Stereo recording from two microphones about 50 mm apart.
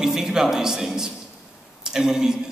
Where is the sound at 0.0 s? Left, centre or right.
Centre.